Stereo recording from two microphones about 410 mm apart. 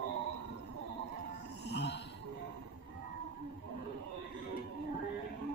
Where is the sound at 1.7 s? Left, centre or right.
Left.